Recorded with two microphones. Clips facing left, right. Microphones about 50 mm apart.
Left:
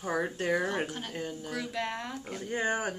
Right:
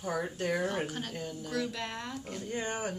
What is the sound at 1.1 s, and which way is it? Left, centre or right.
Speech, left.